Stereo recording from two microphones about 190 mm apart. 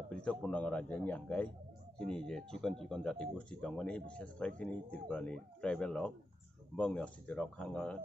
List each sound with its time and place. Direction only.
0.1 s speech: 5° left (ahead or behind)